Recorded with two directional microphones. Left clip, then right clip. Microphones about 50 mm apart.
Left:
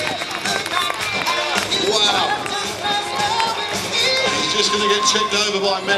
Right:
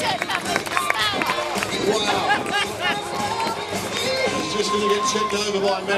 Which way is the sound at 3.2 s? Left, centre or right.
Centre.